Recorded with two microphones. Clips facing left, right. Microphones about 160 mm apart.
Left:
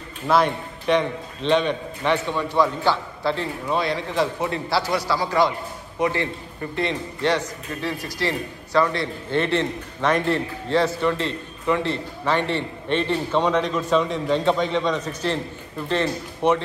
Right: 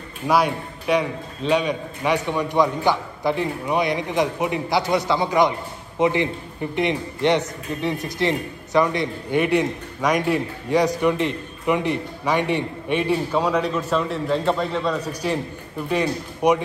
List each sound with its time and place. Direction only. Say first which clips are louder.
0.3 s a man's voice: even; 10° right (ahead or behind)